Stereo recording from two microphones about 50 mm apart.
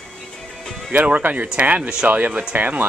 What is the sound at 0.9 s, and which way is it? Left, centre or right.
Speech, right.